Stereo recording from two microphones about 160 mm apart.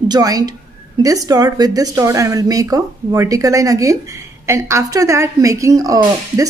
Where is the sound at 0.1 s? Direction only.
25° right (ahead or behind).